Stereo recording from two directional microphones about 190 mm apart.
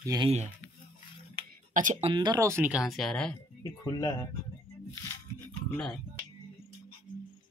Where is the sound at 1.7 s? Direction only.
45° right (ahead or behind).